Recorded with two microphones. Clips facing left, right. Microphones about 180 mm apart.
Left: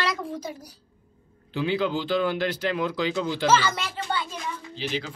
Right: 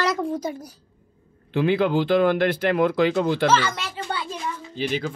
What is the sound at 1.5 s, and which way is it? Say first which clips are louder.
Speech: right 5 dB; 55° right (ahead or behind).